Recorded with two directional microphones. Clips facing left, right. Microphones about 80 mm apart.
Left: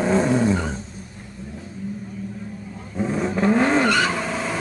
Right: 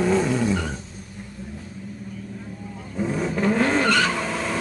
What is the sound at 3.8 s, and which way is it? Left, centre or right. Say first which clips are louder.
Vehicle: left 1 dB; centre.